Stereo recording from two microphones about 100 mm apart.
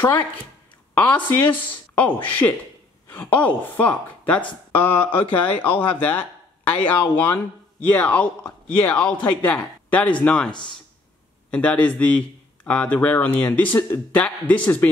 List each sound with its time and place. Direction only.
0.9 s speech: 15° left (ahead or behind)
11.5 s speech: 15° left (ahead or behind)